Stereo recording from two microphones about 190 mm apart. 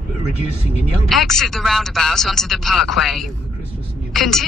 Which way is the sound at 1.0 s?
Centre (ahead or behind).